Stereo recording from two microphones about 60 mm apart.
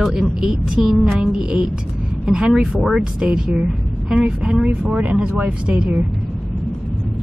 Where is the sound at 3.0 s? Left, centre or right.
Centre.